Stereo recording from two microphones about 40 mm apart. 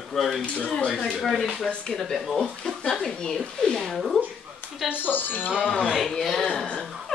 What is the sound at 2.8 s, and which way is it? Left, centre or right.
Speech, left.